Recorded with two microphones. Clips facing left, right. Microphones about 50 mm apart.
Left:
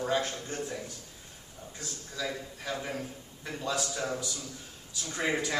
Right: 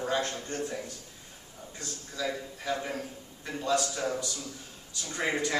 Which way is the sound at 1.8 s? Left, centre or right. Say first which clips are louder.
Right 2 dB; centre.